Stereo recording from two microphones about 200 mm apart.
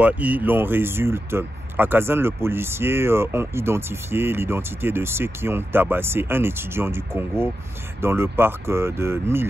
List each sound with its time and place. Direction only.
0.0 s speech: 5° right (ahead or behind)